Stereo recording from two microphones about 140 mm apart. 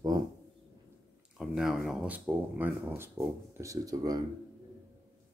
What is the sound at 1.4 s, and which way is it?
Speech, 5° right (ahead or behind).